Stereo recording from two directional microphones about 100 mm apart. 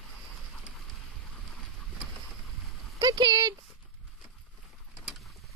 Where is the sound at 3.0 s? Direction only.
50° right (ahead or behind).